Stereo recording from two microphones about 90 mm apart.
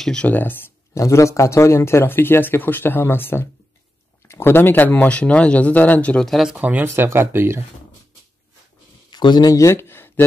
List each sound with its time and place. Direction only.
0.0 s speech: 10° left (ahead or behind)
0.3 s speech: 20° left (ahead or behind)
1.0 s speech: 35° left (ahead or behind); by 6.2 s 15° left (ahead or behind)
6.2 s speech: 5° right (ahead or behind)
6.6 s speech: 20° right (ahead or behind)
9.1 s speech: 55° left (ahead or behind)
9.6 s a sound: 30° left (ahead or behind)